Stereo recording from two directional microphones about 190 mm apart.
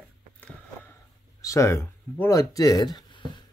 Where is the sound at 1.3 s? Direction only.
15° left (ahead or behind).